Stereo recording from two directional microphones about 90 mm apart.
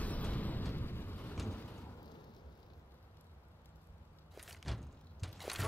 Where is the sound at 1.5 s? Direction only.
25° left (ahead or behind).